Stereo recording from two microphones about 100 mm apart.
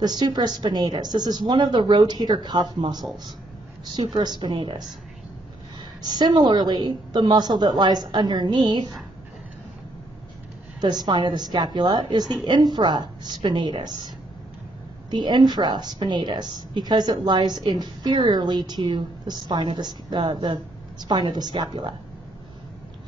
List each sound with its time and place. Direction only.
0.0 s a woman's voice: 45° right (ahead or behind)
4.2 s a woman's voice: 45° right (ahead or behind)
6.0 s a woman's voice: 45° right (ahead or behind)
10.8 s a woman's voice: 45° right (ahead or behind)